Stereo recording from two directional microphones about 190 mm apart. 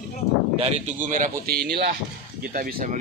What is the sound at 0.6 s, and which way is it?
Speech, 35° right (ahead or behind).